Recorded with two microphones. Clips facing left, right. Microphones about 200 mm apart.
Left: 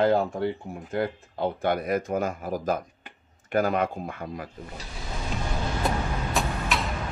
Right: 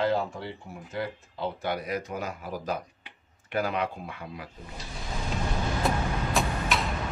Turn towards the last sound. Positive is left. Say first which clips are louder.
# even
turn(degrees=0)  # may be behind; listen again after turning